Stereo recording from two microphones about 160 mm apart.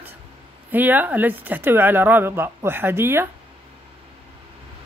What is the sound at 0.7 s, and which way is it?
Speech, 10° right (ahead or behind).